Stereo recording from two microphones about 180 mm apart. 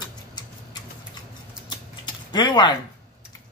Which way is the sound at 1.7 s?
25° left (ahead or behind).